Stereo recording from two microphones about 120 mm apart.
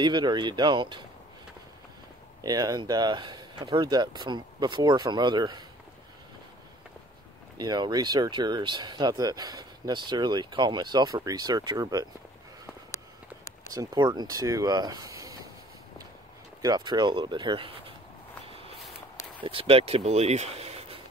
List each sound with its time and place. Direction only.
0.0 s speech: 40° right (ahead or behind)
2.4 s speech: 30° right (ahead or behind)
7.5 s speech: 35° right (ahead or behind)
13.7 s speech: 35° right (ahead or behind)
16.6 s speech: 35° right (ahead or behind)
19.4 s speech: 50° right (ahead or behind)